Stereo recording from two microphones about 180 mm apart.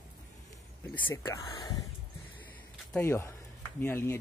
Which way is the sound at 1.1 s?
20° left (ahead or behind).